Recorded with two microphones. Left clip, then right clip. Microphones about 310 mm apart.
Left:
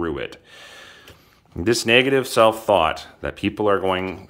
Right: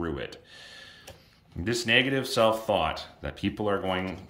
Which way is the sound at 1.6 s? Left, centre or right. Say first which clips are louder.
Left 7 dB; centre.